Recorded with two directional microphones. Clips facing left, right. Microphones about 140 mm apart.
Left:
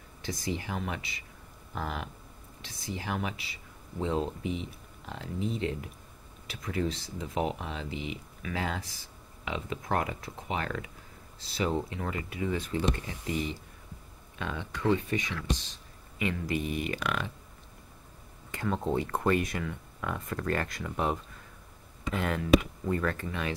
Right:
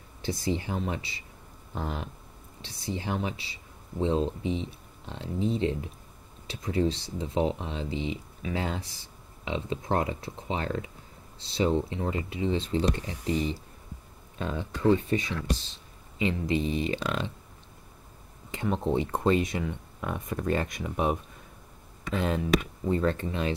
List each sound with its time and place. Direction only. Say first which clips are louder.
0.2 s speech: right 5 dB; 30° right (ahead or behind)
18.5 s speech: right 2 dB; 20° right (ahead or behind)